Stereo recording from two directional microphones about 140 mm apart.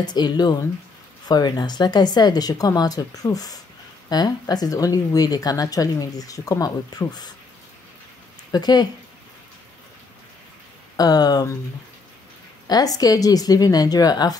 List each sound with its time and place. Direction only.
0.0 s speech: 30° left (ahead or behind)
8.5 s speech: 30° left (ahead or behind)
11.0 s speech: 30° left (ahead or behind)
12.6 s speech: 25° left (ahead or behind)